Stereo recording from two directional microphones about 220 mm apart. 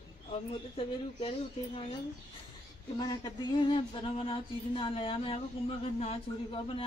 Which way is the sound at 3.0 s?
20° left (ahead or behind).